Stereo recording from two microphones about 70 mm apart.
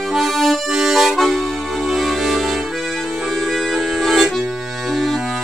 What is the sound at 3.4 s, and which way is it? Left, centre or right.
Accordion, centre.